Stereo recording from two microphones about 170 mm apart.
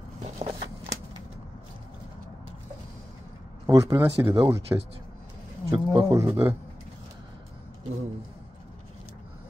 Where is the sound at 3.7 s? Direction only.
20° right (ahead or behind).